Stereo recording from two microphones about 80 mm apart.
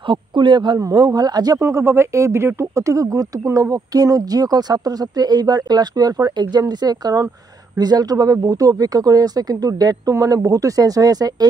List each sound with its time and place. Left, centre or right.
0.1 s speech: right
0.7 s speech: right
1.6 s speech: right